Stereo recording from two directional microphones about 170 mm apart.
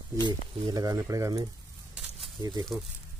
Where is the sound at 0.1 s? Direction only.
25° right (ahead or behind).